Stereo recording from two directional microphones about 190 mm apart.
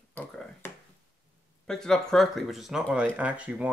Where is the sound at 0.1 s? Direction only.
10° left (ahead or behind).